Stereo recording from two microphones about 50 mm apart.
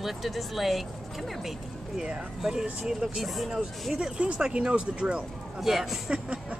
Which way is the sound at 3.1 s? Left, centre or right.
Centre.